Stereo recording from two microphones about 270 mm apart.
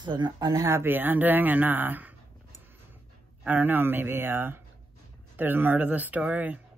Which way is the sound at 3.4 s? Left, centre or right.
Centre.